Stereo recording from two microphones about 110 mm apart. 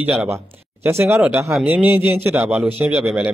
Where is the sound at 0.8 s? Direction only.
20° right (ahead or behind).